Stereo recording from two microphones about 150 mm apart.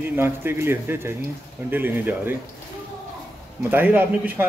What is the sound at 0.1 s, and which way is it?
A man's voice, 15° right (ahead or behind).